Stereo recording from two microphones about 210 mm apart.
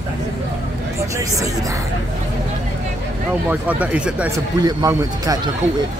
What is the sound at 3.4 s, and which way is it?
Speech, 5° right (ahead or behind).